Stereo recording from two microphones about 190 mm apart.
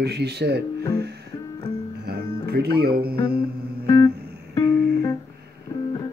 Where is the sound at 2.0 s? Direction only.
55° right (ahead or behind).